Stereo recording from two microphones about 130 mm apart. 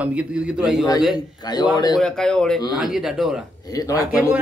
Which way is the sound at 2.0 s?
5° left (ahead or behind).